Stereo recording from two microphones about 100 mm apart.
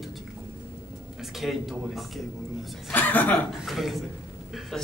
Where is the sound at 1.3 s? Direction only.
Centre (ahead or behind).